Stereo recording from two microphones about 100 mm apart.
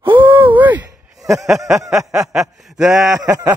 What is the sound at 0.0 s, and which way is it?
Groan, 55° right (ahead or behind).